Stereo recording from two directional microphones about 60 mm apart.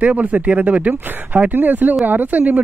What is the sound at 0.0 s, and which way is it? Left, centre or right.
Speech, right.